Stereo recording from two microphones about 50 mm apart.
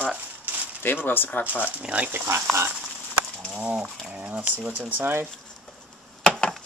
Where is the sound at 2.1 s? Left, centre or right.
Right.